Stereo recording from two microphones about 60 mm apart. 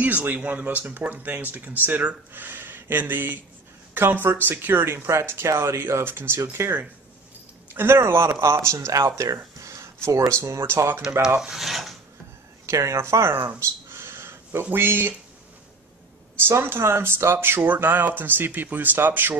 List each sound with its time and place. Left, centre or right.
0.0 s speech: right
9.3 s a sound: right
10.0 s speech: right
11.2 s speech: centre
12.6 s speech: right
13.6 s a sound: right
16.4 s speech: right